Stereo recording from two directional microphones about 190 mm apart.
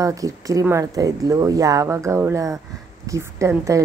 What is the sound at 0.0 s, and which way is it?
Speech, 15° right (ahead or behind).